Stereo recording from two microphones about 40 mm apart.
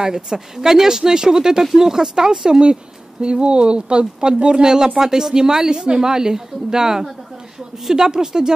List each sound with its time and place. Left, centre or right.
0.0 s speech: centre